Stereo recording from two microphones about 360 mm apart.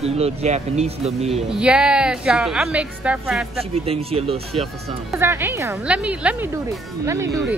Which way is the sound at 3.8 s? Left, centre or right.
Centre.